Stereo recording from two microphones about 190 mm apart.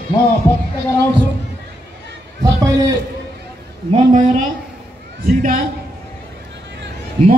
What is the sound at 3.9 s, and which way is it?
Speech, 40° right (ahead or behind).